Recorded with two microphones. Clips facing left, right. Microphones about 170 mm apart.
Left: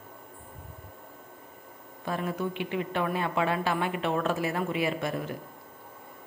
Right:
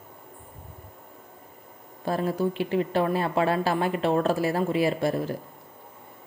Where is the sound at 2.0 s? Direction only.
35° right (ahead or behind).